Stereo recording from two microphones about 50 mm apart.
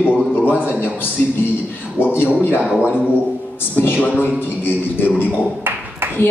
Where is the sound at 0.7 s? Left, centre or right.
Left.